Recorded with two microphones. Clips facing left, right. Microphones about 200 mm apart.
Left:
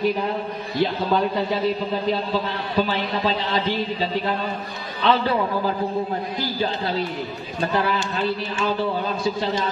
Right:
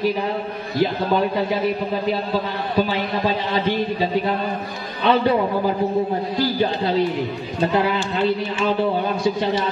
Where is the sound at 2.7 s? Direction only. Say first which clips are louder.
Right 2 dB; 15° right (ahead or behind).